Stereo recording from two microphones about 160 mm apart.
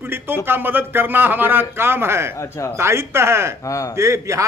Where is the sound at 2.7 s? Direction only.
15° right (ahead or behind).